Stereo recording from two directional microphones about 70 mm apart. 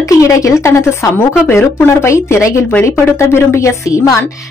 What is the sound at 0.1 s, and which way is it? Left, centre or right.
Speech, left.